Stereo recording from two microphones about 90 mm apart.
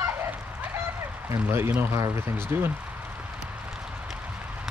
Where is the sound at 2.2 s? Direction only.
25° right (ahead or behind).